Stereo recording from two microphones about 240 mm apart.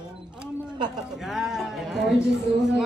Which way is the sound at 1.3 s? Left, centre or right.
Centre.